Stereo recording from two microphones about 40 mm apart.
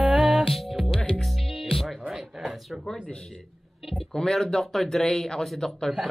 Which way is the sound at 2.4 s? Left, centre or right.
Centre.